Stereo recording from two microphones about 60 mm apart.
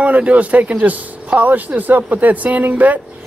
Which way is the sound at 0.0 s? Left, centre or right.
Right.